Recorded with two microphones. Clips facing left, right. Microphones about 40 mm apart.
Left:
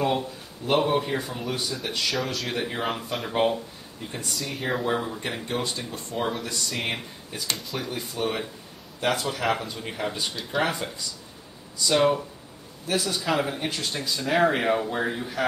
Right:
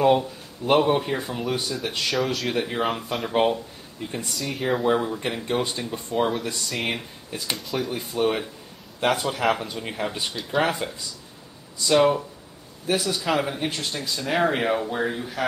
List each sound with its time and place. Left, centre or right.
0.0 s speech: centre
6.1 s speech: centre
7.9 s speech: centre
11.9 s speech: centre